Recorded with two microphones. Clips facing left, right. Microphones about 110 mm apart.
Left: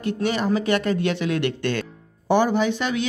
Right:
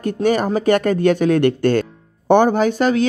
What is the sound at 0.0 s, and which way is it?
Speech, 45° right (ahead or behind).